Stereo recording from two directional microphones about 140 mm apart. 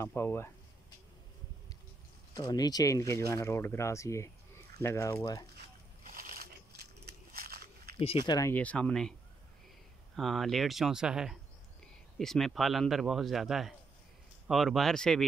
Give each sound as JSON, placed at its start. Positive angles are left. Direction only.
{"t": 0.0, "sound": "speech", "side_deg": 15}
{"t": 2.3, "sound": "speech", "side_deg": 30}
{"t": 6.0, "sound": "crushing", "side_deg": -90}
{"t": 7.3, "sound": "biting", "side_deg": -90}
{"t": 8.2, "sound": "speech", "side_deg": 30}
{"t": 8.5, "sound": "speech", "side_deg": 10}
{"t": 10.1, "sound": "speech", "side_deg": 0}